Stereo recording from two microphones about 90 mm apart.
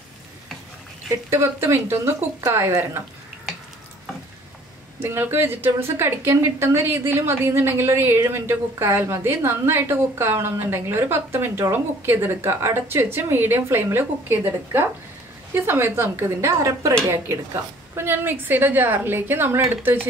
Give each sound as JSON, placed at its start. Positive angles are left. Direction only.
{"t": 1.3, "sound": "speech", "side_deg": -25}
{"t": 5.0, "sound": "speech", "side_deg": -25}
{"t": 17.9, "sound": "speech", "side_deg": -25}